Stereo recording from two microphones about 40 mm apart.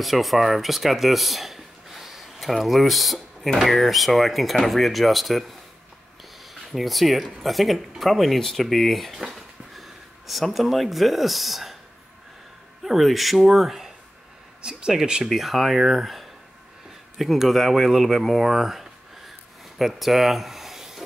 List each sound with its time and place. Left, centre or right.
0.0 s speech: centre
6.7 s speech: centre
12.8 s speech: centre
14.6 s speech: centre
15.2 s speech: centre